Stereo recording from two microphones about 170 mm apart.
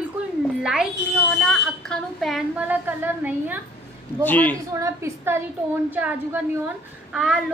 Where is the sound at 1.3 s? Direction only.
5° left (ahead or behind).